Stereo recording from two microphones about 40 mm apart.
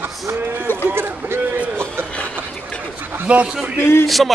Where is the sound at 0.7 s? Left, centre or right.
Left.